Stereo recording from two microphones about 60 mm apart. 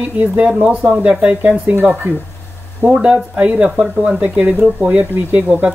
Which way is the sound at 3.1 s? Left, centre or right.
Right.